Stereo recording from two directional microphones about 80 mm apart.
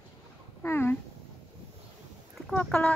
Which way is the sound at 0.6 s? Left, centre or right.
Left.